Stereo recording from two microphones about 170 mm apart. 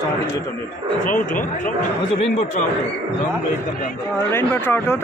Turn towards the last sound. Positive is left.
turn(degrees=15)  # may be behind; listen again after turning